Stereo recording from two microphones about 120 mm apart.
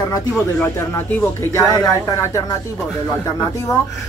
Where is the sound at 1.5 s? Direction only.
30° left (ahead or behind).